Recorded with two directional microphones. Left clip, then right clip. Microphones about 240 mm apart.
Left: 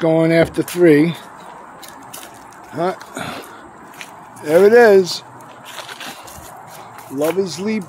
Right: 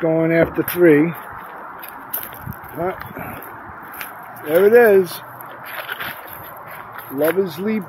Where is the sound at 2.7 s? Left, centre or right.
Left.